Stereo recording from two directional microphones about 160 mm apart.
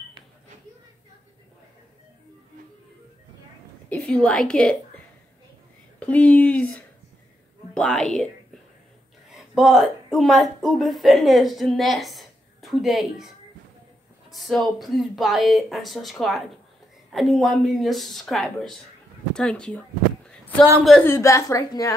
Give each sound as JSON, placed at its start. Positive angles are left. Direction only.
{"t": 3.9, "sound": "a woman's voice", "side_deg": 5}
{"t": 9.3, "sound": "a woman's voice", "side_deg": 0}
{"t": 14.3, "sound": "speech", "side_deg": 0}
{"t": 20.2, "sound": "a sound", "side_deg": 10}
{"t": 21.0, "sound": "a woman's voice", "side_deg": 15}